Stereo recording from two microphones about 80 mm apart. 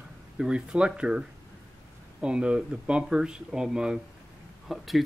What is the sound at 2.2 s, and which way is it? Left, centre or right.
Speech, centre.